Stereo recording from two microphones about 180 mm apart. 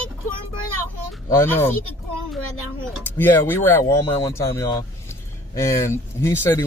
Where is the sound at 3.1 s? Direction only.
10° left (ahead or behind).